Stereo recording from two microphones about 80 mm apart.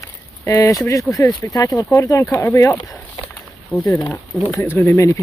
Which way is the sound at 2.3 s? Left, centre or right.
Left.